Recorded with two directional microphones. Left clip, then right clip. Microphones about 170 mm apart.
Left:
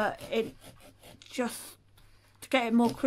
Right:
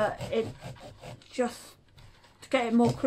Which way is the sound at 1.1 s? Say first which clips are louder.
Right 3 dB; 25° left (ahead or behind).